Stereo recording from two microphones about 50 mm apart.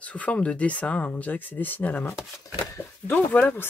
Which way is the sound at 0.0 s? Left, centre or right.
Left.